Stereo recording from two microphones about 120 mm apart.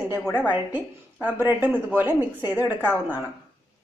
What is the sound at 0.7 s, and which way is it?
A woman's voice, 15° right (ahead or behind).